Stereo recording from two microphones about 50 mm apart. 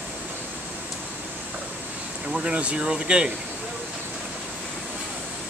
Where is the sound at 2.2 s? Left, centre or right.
Centre.